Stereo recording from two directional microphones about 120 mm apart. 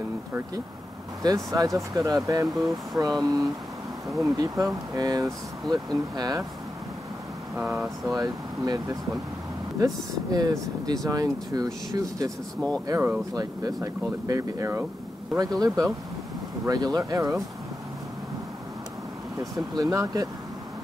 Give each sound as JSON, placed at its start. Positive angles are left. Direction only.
{"t": 1.2, "sound": "speech", "side_deg": -30}
{"t": 7.8, "sound": "speech", "side_deg": -5}
{"t": 8.2, "sound": "speech", "side_deg": -30}
{"t": 10.3, "sound": "speech", "side_deg": -30}
{"t": 19.7, "sound": "speech", "side_deg": -30}